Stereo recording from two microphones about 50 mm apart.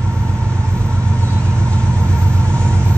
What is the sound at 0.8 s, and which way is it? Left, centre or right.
Vehicle, right.